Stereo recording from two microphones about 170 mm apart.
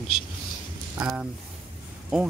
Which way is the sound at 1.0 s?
5° right (ahead or behind).